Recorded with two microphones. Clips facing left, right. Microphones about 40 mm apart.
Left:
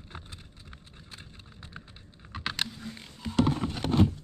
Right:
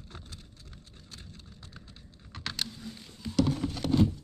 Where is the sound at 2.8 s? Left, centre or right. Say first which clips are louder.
Left 2 dB; left.